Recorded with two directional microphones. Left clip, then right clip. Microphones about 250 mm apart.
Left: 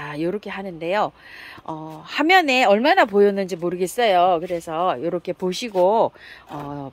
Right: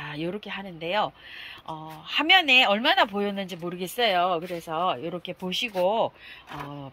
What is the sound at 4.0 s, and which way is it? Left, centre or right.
Speech, centre.